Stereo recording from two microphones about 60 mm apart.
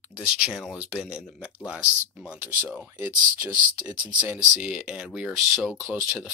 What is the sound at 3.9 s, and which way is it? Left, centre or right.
Speech, centre.